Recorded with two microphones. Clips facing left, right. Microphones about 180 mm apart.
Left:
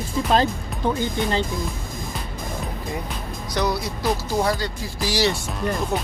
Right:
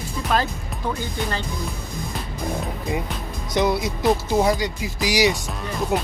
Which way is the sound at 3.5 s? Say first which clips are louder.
Right 3 dB; 20° right (ahead or behind).